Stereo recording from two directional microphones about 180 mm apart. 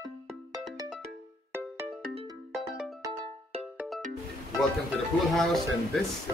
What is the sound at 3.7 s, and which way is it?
Music, centre (ahead or behind).